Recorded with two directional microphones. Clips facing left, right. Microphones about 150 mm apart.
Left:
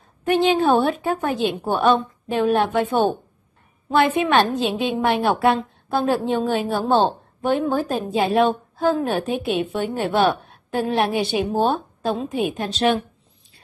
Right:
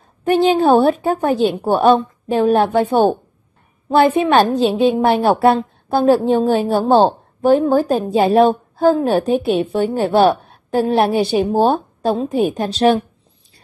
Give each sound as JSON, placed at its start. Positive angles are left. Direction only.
{"t": 0.3, "sound": "a woman's voice", "side_deg": -35}